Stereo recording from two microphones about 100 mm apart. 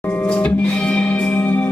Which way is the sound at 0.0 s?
15° left (ahead or behind).